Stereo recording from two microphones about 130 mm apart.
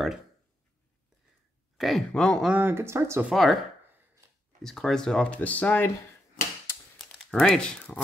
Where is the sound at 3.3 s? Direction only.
Centre (ahead or behind).